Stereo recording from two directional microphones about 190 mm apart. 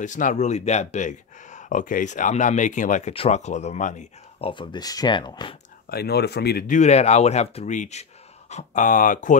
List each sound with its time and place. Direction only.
0.0 s speech: 40° left (ahead or behind); by 5.6 s 25° left (ahead or behind)
5.9 s speech: 55° left (ahead or behind)
6.8 s speech: 35° left (ahead or behind)